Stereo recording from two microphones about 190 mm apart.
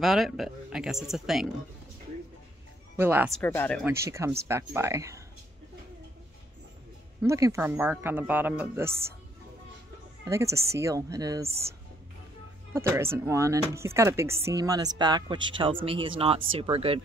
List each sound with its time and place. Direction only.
0.0 s speech: centre (ahead or behind)
3.0 s speech: 10° right (ahead or behind)
3.3 s speech: 10° left (ahead or behind)
3.8 s speech: 15° right (ahead or behind)
7.2 s speech: 15° right (ahead or behind)
10.2 s speech: 15° right (ahead or behind)
12.7 s speech: 15° right (ahead or behind); by 17.0 s 30° right (ahead or behind)